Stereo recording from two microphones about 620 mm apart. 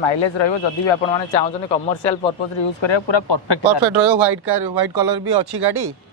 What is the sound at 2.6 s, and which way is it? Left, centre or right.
Speech, left.